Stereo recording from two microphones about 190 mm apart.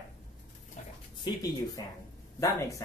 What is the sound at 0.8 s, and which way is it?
Speech, 35° left (ahead or behind).